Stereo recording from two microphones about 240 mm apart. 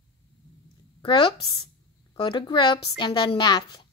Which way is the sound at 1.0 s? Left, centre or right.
Centre.